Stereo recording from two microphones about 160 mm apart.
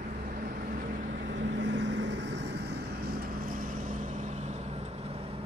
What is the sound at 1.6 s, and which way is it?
Vehicle, 90° right.